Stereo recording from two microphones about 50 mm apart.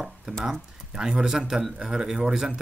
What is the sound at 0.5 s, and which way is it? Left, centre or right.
A man's voice, centre.